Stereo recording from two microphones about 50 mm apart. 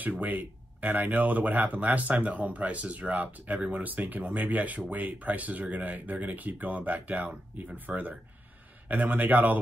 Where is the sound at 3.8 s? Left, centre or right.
Right.